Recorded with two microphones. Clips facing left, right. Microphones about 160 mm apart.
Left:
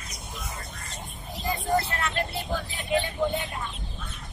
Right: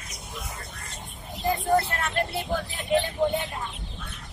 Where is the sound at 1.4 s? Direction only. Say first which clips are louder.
Right 3 dB; 55° right (ahead or behind).